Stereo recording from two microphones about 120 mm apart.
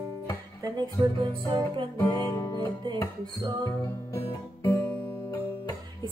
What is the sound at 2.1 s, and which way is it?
Music, 30° left (ahead or behind).